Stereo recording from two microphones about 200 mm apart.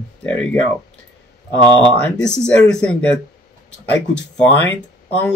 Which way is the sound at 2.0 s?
5° left (ahead or behind).